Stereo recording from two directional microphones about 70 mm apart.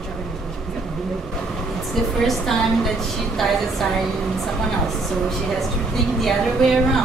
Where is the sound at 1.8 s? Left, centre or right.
Centre.